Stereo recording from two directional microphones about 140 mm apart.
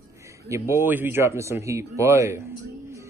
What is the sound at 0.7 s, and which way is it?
Speech, 15° right (ahead or behind).